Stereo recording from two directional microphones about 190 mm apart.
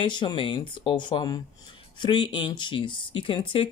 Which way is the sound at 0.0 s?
25° left (ahead or behind).